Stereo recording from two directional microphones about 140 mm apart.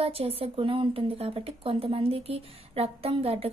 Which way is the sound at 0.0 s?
45° right (ahead or behind).